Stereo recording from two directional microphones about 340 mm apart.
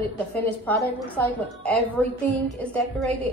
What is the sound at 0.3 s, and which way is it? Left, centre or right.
A woman's voice, centre.